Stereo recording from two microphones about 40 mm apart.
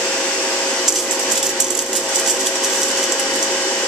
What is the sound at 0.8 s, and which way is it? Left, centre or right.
Ratchet, centre.